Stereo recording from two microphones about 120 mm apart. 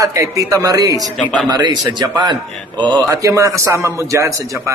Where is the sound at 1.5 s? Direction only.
35° right (ahead or behind).